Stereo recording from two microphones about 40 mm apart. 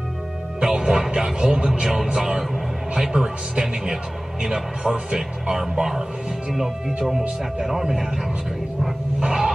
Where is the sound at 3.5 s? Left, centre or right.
Centre.